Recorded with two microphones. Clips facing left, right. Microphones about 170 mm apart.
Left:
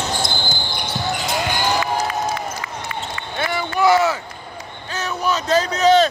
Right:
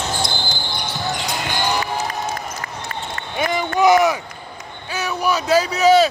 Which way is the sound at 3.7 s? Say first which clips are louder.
Right 2 dB; 15° right (ahead or behind).